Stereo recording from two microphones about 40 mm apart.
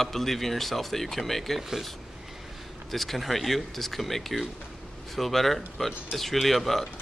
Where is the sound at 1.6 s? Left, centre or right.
Centre.